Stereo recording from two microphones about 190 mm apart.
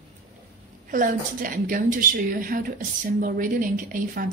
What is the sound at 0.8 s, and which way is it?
A woman's voice, 45° right (ahead or behind).